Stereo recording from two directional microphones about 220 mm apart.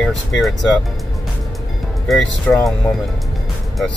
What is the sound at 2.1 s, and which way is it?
Speech, centre (ahead or behind).